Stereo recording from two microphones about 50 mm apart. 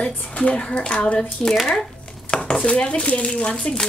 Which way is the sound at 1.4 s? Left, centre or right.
Centre.